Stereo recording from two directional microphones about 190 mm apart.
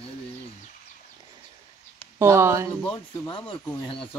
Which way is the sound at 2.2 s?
15° right (ahead or behind).